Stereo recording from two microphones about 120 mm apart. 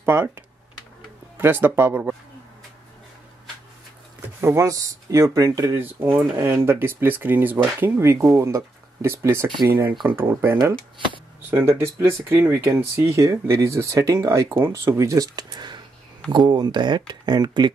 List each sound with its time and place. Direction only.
0.0 s speech: 20° right (ahead or behind)
1.4 s speech: 20° right (ahead or behind)
4.4 s speech: 20° right (ahead or behind)